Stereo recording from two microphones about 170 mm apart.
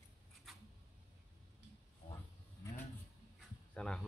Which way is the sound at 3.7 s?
5° left (ahead or behind).